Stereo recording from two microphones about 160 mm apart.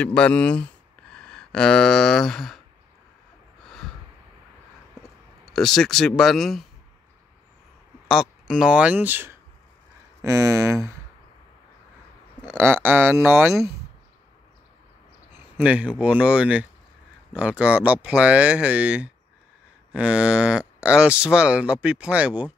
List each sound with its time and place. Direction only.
0.0 s speech: 5° left (ahead or behind)
3.6 s a sound: centre (ahead or behind)
5.4 s speech: centre (ahead or behind)
8.1 s speech: centre (ahead or behind); by 11.0 s 20° right (ahead or behind)
12.5 s speech: 15° right (ahead or behind)
15.3 s speech: 10° right (ahead or behind)